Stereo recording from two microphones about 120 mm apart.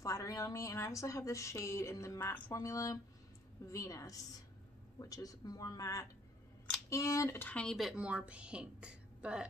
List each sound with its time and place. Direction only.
0.0 s a woman's voice: 25° left (ahead or behind); by 9.5 s 10° right (ahead or behind)